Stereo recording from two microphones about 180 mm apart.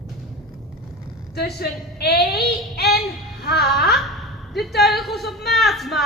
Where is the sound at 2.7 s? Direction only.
65° left (ahead or behind).